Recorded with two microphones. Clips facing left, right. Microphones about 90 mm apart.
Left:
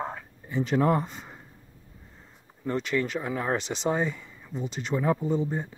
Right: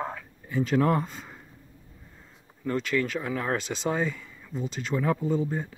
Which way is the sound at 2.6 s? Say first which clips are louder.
Even; 20° left (ahead or behind).